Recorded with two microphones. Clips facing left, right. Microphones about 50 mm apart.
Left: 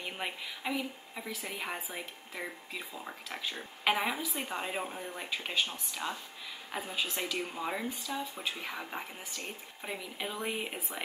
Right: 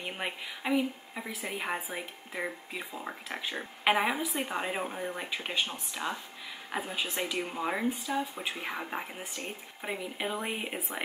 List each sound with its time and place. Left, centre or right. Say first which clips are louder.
0.0 s a woman's voice: right 2 dB; centre
7.9 s a woman's voice: right 5 dB; right